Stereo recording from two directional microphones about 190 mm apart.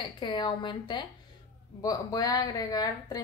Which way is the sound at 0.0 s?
25° left (ahead or behind).